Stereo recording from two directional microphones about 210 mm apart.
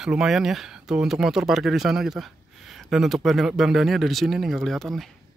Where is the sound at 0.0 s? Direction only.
Centre (ahead or behind).